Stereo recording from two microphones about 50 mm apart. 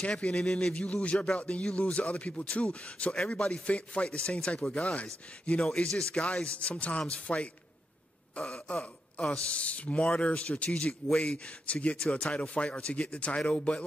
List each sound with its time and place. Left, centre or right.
0.1 s speech: centre
2.0 s speech: left
5.6 s speech: centre